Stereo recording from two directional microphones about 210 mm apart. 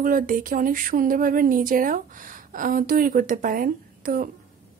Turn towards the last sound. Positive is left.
turn(degrees=-40)  # may be behind; listen again after turning